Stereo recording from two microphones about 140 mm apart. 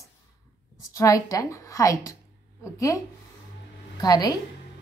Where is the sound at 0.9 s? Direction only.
25° left (ahead or behind).